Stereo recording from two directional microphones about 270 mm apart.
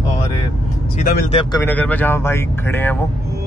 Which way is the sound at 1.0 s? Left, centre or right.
Left.